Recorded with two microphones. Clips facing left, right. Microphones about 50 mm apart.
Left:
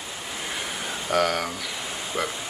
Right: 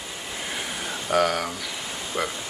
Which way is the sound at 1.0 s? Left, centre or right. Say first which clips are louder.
Right 1 dB; centre.